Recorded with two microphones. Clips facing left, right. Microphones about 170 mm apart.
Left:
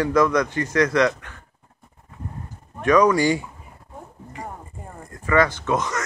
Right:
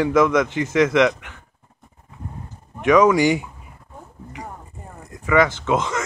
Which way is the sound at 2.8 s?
20° right (ahead or behind).